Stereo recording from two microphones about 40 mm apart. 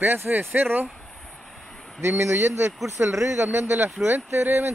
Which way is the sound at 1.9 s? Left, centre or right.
Right.